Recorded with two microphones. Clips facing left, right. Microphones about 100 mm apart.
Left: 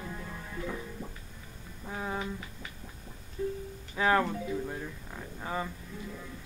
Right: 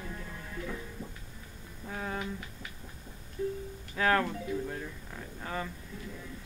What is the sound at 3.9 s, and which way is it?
Speech, 10° left (ahead or behind).